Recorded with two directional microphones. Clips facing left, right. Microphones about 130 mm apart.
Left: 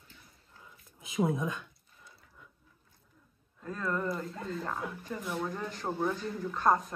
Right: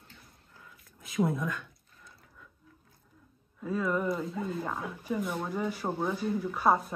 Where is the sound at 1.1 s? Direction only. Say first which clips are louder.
Right 1 dB; 20° left (ahead or behind).